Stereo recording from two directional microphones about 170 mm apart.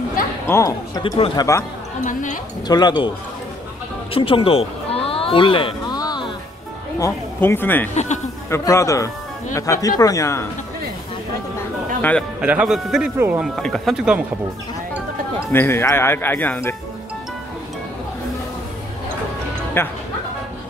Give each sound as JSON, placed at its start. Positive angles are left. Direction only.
{"t": 0.5, "sound": "speech", "side_deg": 20}
{"t": 2.7, "sound": "speech", "side_deg": 25}
{"t": 4.1, "sound": "a sound", "side_deg": 30}
{"t": 7.0, "sound": "speech", "side_deg": 15}
{"t": 7.9, "sound": "speech", "side_deg": 45}
{"t": 8.5, "sound": "speech", "side_deg": 15}
{"t": 12.0, "sound": "speech", "side_deg": 10}
{"t": 12.4, "sound": "speech", "side_deg": -5}
{"t": 13.6, "sound": "speech", "side_deg": 0}
{"t": 15.5, "sound": "speech", "side_deg": 15}
{"t": 19.8, "sound": "speech", "side_deg": 15}